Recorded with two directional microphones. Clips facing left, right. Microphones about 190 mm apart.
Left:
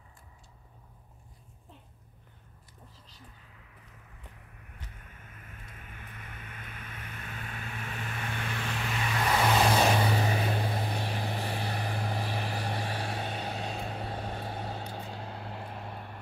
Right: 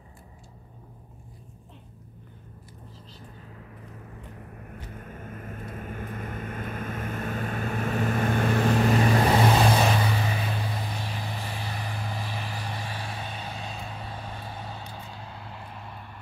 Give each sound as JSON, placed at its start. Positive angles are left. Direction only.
{"t": 3.5, "sound": "vehicle", "side_deg": -45}
{"t": 10.0, "sound": "vehicle", "side_deg": 35}